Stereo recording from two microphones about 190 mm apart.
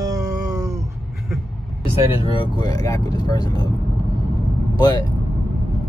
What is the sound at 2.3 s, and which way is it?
Speech, 25° left (ahead or behind).